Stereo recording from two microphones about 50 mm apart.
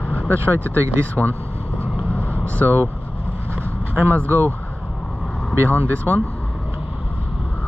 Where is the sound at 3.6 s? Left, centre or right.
Right.